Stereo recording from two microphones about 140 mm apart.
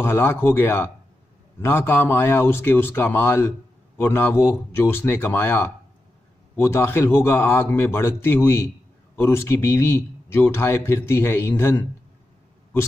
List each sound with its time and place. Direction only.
0.0 s speech: 15° left (ahead or behind)